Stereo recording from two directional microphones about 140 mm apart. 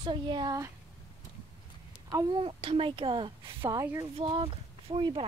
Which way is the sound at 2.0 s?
30° right (ahead or behind).